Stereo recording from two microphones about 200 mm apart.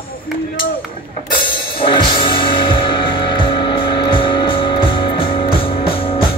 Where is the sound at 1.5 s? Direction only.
25° left (ahead or behind).